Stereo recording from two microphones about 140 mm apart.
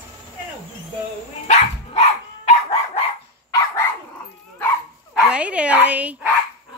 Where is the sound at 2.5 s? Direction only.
45° left (ahead or behind).